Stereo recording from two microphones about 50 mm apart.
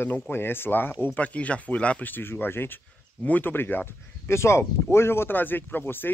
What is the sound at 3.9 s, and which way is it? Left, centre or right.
Speech, left.